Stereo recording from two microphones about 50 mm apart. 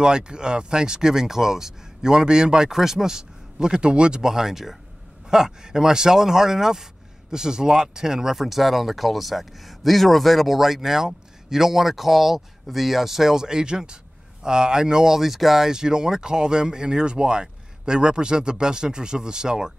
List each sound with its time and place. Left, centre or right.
0.0 s speech: centre